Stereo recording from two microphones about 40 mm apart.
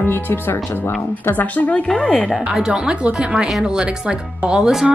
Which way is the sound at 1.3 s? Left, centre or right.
Left.